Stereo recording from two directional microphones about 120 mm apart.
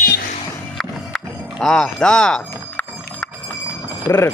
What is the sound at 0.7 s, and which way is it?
Music, 5° left (ahead or behind).